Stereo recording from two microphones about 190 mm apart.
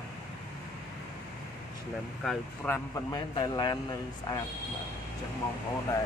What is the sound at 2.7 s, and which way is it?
A man's voice, 20° left (ahead or behind).